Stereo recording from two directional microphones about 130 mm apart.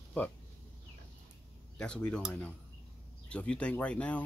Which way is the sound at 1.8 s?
5° left (ahead or behind).